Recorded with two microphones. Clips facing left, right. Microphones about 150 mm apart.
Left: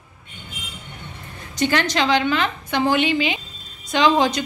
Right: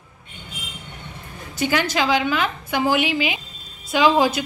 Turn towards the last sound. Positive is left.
turn(degrees=-5)  # may be behind; listen again after turning